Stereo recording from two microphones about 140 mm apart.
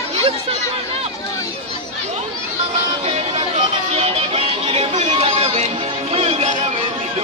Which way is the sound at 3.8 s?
50° right (ahead or behind).